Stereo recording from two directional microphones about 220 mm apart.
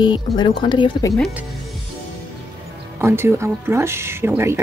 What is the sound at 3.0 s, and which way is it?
Speech, 10° right (ahead or behind).